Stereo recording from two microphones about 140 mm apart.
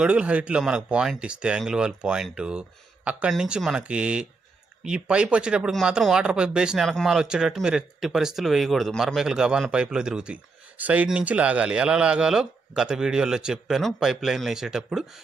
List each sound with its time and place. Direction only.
0.0 s speech: 10° right (ahead or behind)